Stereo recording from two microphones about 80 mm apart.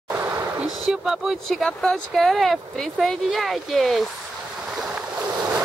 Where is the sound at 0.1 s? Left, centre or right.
Right.